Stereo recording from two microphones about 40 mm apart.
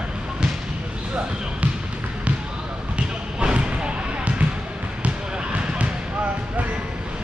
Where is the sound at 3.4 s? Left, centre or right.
Right.